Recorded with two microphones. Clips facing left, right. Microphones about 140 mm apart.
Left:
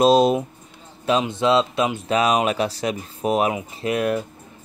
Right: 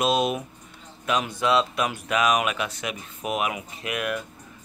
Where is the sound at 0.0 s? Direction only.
35° left (ahead or behind).